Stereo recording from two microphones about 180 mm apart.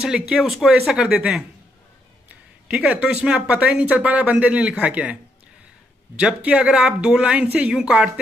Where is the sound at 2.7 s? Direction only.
5° right (ahead or behind).